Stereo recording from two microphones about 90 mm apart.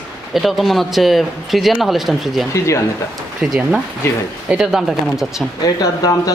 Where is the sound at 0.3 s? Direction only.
Centre (ahead or behind).